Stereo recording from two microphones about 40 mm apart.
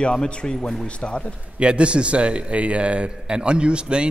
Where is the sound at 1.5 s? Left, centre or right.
Right.